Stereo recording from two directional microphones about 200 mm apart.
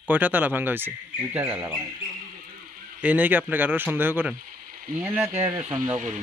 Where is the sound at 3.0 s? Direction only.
10° right (ahead or behind).